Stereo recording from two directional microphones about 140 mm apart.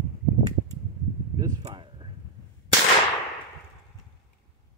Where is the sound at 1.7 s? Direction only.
40° right (ahead or behind).